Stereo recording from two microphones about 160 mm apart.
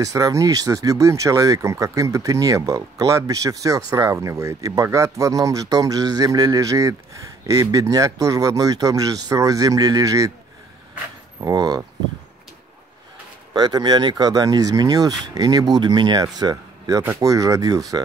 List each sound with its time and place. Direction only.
0.0 s speech: 20° right (ahead or behind)
11.4 s speech: 25° right (ahead or behind)
13.5 s speech: 25° right (ahead or behind)